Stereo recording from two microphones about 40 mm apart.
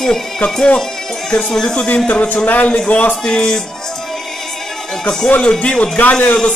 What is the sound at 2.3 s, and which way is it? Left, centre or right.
Speech, left.